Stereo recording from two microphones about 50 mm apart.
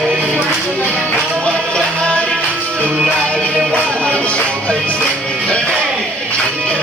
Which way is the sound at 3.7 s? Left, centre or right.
Centre.